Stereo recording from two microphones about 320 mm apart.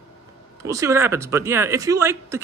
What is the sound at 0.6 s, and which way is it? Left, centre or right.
Speech, centre.